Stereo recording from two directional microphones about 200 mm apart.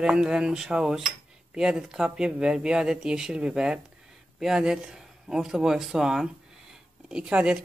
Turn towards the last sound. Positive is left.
turn(degrees=-5)  # may be behind; listen again after turning